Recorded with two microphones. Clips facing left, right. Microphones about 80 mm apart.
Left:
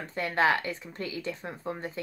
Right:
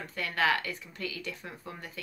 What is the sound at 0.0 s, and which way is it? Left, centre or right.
Speech, left.